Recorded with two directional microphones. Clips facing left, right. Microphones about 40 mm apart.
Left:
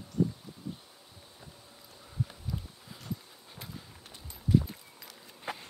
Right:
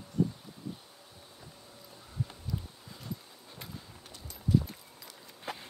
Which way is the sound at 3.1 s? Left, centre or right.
Centre.